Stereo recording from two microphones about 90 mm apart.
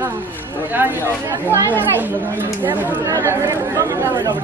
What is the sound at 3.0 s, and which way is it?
Speech, 35° right (ahead or behind).